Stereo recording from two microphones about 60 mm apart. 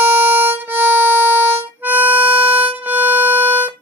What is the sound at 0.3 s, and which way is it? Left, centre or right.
Harmonica, right.